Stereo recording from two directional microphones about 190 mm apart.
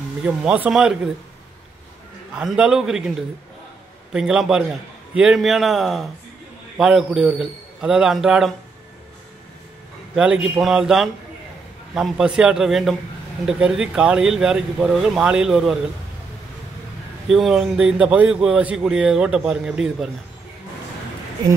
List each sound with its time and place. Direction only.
0.2 s a man's voice: 5° right (ahead or behind)
2.3 s a man's voice: 5° right (ahead or behind)
10.1 s a man's voice: 5° right (ahead or behind)
17.3 s a man's voice: centre (ahead or behind)